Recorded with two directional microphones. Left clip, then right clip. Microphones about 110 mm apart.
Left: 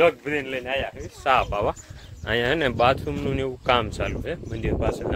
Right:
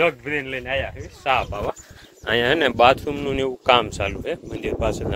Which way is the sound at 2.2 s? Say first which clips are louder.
Right 4 dB; 50° right (ahead or behind).